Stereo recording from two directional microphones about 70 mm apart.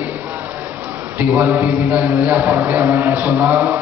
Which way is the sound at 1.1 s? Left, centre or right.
Right.